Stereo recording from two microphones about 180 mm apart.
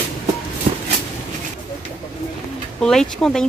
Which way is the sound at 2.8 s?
5° left (ahead or behind).